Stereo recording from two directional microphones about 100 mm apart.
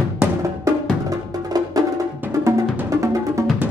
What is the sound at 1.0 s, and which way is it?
Music, 40° right (ahead or behind).